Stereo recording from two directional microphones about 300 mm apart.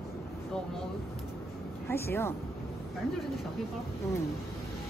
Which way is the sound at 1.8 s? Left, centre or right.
Centre.